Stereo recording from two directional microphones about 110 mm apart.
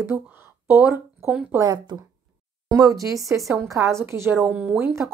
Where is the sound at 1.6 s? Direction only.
40° right (ahead or behind).